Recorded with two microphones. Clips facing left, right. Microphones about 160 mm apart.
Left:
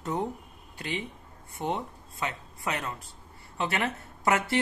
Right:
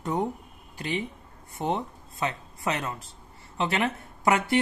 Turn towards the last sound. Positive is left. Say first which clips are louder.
# right 3 dB
turn(degrees=-20)  # may be behind; listen again after turning